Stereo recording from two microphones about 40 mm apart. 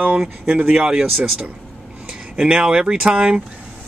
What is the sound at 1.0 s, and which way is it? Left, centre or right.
Speech, centre.